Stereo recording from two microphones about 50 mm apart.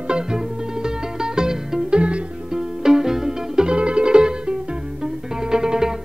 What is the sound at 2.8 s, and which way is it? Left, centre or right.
Music, centre.